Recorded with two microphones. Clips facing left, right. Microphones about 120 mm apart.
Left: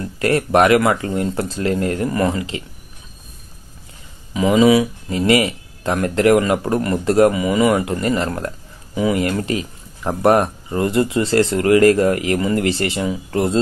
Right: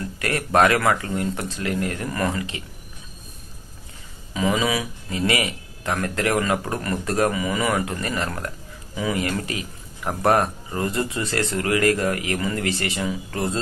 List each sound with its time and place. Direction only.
0.0 s speech: 25° left (ahead or behind)
4.3 s speech: 25° left (ahead or behind)